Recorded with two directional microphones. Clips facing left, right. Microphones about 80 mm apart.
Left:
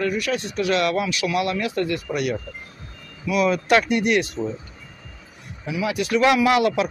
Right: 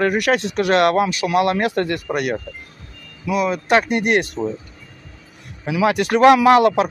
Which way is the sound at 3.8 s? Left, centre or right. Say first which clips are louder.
Right 2 dB; right.